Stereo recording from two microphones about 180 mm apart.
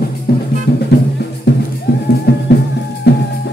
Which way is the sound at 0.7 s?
70° left (ahead or behind).